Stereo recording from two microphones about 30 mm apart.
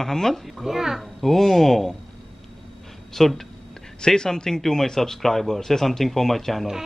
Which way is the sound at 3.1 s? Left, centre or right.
Centre.